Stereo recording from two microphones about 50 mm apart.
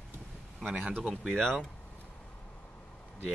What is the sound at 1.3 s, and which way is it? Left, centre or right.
Speech, centre.